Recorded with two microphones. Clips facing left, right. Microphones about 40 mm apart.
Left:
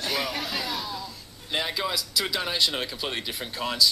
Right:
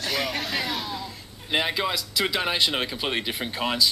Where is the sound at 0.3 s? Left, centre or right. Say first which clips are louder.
Right 2 dB; centre.